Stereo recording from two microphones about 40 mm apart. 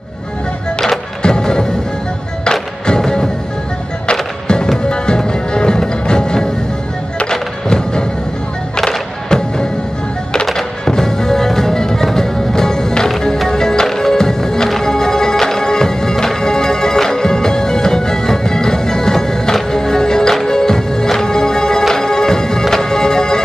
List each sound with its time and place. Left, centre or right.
0.7 s music: centre
4.1 s music: left